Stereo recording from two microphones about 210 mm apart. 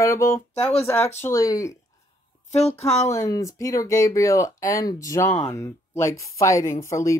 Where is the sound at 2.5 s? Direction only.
30° left (ahead or behind).